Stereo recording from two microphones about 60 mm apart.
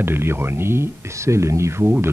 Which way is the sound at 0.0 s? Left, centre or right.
Right.